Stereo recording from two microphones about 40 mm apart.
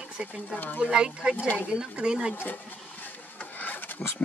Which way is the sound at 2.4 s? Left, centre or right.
Left.